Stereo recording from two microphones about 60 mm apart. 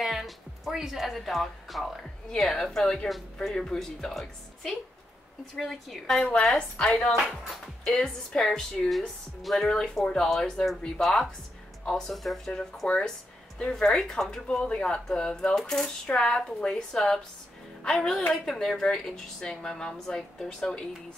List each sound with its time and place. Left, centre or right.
0.0 s a woman's voice: centre
8.8 s speech: centre
12.8 s a woman's voice: left